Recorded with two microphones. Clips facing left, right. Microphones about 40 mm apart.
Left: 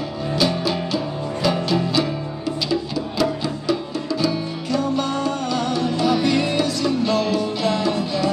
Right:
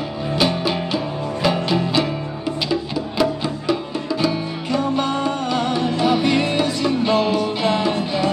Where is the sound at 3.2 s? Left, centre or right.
Right.